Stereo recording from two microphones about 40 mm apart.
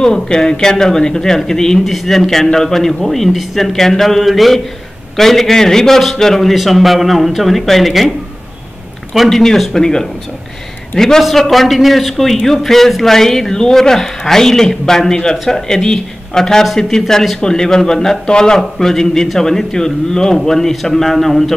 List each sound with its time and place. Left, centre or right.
0.0 s a man's voice: centre
9.1 s a man's voice: centre
9.6 s a man's voice: centre
17.4 s a man's voice: centre